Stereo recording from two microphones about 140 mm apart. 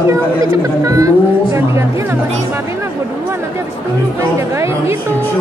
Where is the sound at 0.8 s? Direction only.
25° right (ahead or behind).